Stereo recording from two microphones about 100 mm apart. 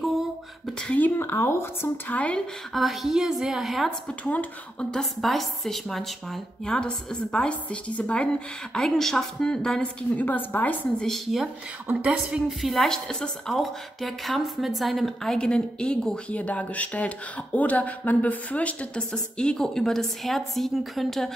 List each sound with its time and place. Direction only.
0.8 s speech: 15° left (ahead or behind)
2.7 s a woman's voice: centre (ahead or behind)
4.2 s a woman's voice: 15° left (ahead or behind)
11.1 s a woman's voice: centre (ahead or behind)